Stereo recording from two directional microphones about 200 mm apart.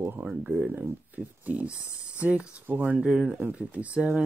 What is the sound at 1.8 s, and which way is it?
Speech, 15° left (ahead or behind).